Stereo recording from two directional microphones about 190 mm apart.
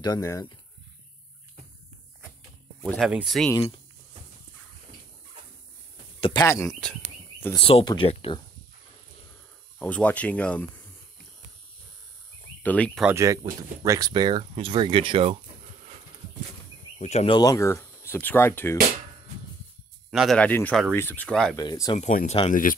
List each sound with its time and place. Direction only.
0.0 s speech: 20° left (ahead or behind)
2.8 s speech: centre (ahead or behind)
3.5 s speech: 25° left (ahead or behind)
6.2 s speech: 20° left (ahead or behind)
7.5 s speech: 25° left (ahead or behind)
9.8 s speech: 10° left (ahead or behind)
12.6 s speech: 5° left (ahead or behind)
13.0 s speech: 15° right (ahead or behind)
17.0 s speech: 35° left (ahead or behind)
17.4 s speech: 15° left (ahead or behind)
20.1 s speech: centre (ahead or behind)
21.5 s speech: 20° left (ahead or behind)
21.9 s speech: 40° left (ahead or behind)